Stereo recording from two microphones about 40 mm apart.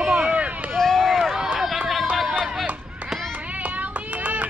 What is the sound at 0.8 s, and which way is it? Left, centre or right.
Run, centre.